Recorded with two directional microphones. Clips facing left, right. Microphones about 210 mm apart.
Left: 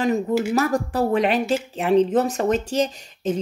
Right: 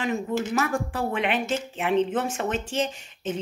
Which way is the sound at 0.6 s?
40° left (ahead or behind).